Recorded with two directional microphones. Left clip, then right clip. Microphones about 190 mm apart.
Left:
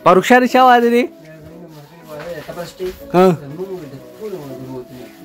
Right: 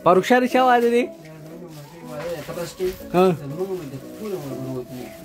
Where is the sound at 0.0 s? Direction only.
15° left (ahead or behind).